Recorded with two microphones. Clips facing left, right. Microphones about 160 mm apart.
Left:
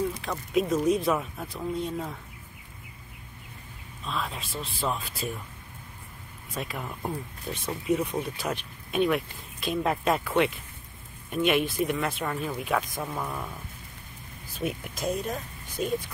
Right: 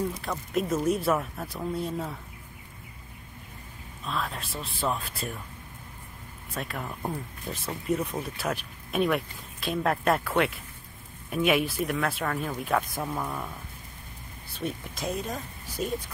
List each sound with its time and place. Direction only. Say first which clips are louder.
0.2 s speech: left 2 dB; centre (ahead or behind)
4.0 s speech: right 1 dB; centre (ahead or behind)
6.5 s speech: even; centre (ahead or behind)
14.6 s speech: left 2 dB; 10° left (ahead or behind)
15.0 s a woman's voice: left 3 dB; centre (ahead or behind)